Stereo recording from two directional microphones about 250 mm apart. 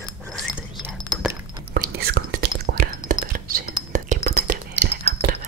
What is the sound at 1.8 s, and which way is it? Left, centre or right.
Whispering, right.